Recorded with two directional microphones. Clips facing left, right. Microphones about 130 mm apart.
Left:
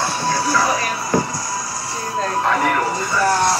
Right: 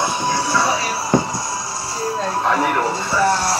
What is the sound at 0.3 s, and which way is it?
Music, 25° right (ahead or behind).